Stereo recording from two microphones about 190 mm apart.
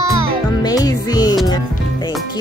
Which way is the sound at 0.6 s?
20° left (ahead or behind).